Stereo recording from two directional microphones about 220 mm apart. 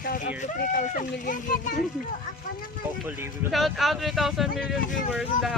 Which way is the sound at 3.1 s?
5° right (ahead or behind).